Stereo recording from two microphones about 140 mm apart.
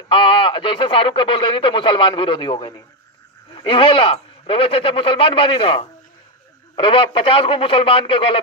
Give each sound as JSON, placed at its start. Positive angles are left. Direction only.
{"t": 0.1, "sound": "speech", "side_deg": 40}